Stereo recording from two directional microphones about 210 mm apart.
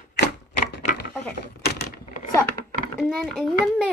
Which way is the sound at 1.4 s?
50° left (ahead or behind).